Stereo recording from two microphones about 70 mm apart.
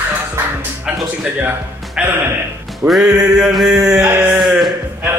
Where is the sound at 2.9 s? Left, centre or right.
Centre.